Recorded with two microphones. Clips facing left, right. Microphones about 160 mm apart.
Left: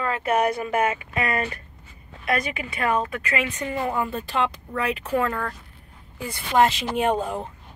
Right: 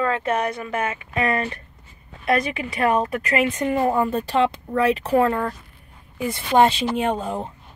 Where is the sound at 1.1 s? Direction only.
30° right (ahead or behind).